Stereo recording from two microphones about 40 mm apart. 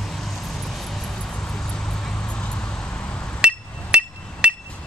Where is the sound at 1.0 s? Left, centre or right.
Centre.